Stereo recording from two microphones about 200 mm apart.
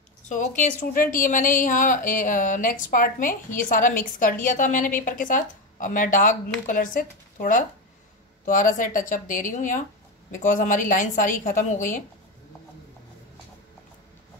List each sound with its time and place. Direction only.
0.6 s a woman's voice: 40° left (ahead or behind)